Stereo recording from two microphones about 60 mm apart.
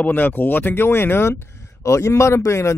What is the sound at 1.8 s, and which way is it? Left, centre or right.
Speech, left.